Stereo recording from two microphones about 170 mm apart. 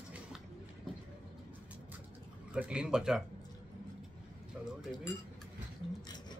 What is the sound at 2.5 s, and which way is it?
Speech, 5° right (ahead or behind).